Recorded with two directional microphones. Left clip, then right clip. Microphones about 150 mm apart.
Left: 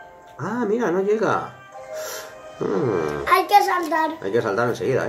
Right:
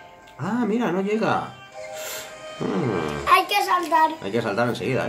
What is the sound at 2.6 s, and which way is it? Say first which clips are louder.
Speech: left 3 dB; 15° right (ahead or behind).